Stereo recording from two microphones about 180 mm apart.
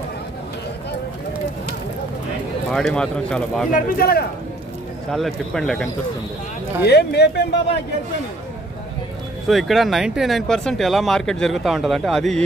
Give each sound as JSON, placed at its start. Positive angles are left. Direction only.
{"t": 2.7, "sound": "speech", "side_deg": 5}
{"t": 3.7, "sound": "speech", "side_deg": 55}
{"t": 5.1, "sound": "speech", "side_deg": 0}
{"t": 6.8, "sound": "speech", "side_deg": 65}
{"t": 9.5, "sound": "speech", "side_deg": 0}